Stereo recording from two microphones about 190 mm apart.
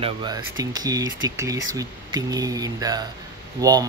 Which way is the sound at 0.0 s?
25° right (ahead or behind).